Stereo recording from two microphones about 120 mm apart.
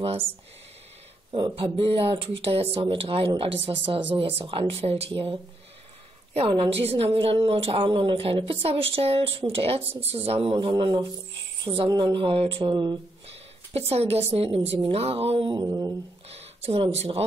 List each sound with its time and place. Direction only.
1.3 s a woman's voice: 45° right (ahead or behind)
13.7 s a woman's voice: 55° right (ahead or behind)
15.6 s speech: 30° right (ahead or behind)
16.3 s speech: 60° right (ahead or behind)